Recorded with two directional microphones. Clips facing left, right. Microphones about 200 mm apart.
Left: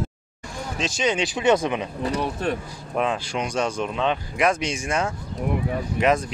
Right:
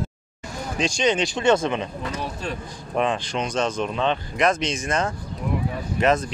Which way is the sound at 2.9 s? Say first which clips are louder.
Right 1 dB; 5° left (ahead or behind).